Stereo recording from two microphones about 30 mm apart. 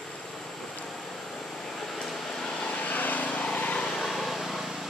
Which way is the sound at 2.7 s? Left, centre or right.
Left.